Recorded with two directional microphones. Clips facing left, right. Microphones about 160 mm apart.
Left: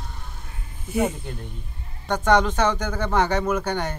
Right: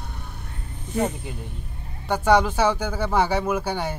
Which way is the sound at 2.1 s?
10° right (ahead or behind).